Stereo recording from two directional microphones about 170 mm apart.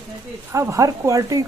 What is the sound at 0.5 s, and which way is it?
Speech, 20° right (ahead or behind).